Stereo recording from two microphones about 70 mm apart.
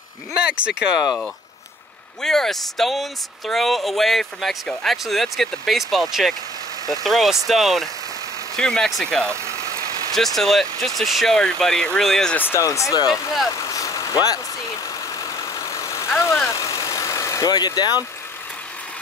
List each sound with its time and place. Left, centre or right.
0.5 s speech: centre
2.2 s speech: centre
9.3 s vehicle: right
10.1 s speech: centre
12.5 s speech: left
13.5 s vehicle: left
17.5 s speech: left